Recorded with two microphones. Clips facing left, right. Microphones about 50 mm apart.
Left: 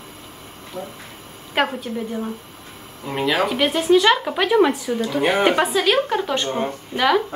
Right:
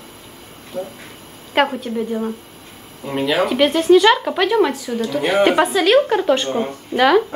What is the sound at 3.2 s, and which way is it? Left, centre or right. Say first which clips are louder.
A woman's voice: right 3 dB; centre.